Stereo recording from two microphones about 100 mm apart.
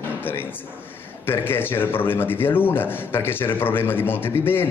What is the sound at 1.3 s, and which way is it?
A man's voice, 20° left (ahead or behind).